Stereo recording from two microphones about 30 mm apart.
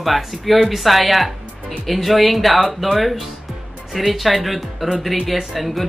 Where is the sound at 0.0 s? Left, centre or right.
Centre.